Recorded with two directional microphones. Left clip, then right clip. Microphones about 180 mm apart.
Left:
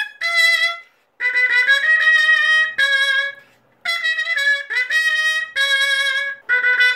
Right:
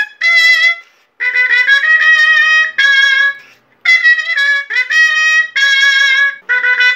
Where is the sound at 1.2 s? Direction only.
55° left (ahead or behind).